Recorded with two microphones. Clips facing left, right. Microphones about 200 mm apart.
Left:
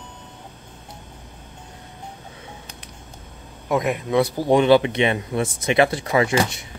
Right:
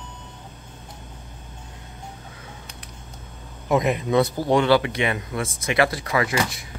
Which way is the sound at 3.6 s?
Centre (ahead or behind).